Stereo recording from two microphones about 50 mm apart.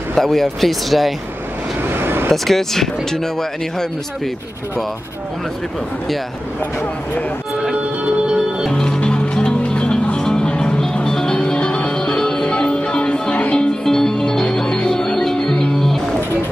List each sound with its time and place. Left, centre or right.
0.1 s speech: centre
1.8 s vehicle: right
2.3 s speech: centre
7.7 s music: right
8.6 s music: centre